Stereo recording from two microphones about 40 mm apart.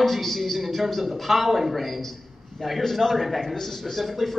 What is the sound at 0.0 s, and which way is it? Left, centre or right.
A man's voice, centre.